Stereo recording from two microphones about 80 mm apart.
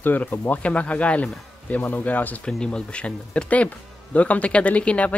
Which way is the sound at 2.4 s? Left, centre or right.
Centre.